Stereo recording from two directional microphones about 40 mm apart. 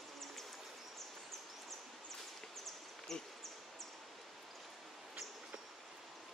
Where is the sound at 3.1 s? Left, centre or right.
Centre.